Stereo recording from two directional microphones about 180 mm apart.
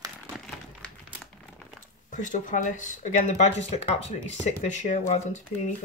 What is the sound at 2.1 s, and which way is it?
Speech, 45° left (ahead or behind).